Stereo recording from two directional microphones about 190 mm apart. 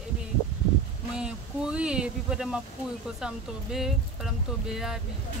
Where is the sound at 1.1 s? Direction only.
5° right (ahead or behind).